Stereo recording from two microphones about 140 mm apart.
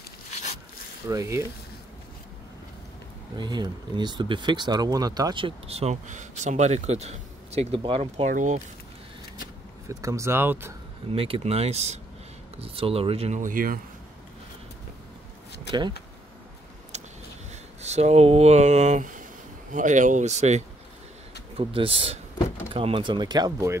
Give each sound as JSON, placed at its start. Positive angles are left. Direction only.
{"t": 1.0, "sound": "speech", "side_deg": -20}
{"t": 3.3, "sound": "speech", "side_deg": -30}
{"t": 8.3, "sound": "speech", "side_deg": -60}
{"t": 9.8, "sound": "speech", "side_deg": -20}
{"t": 11.1, "sound": "speech", "side_deg": -40}
{"t": 13.4, "sound": "speech", "side_deg": -80}
{"t": 16.9, "sound": "a sound", "side_deg": -55}
{"t": 17.8, "sound": "speech", "side_deg": -55}
{"t": 21.5, "sound": "speech", "side_deg": -40}